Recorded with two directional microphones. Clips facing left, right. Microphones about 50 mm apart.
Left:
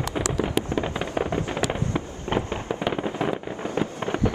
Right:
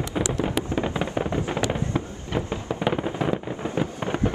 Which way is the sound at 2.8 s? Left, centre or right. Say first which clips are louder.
Right 2 dB; centre.